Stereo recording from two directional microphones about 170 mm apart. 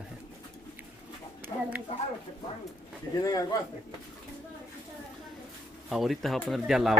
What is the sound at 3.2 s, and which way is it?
Speech, 20° left (ahead or behind).